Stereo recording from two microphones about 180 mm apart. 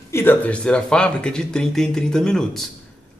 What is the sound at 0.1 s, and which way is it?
Speech, 10° left (ahead or behind).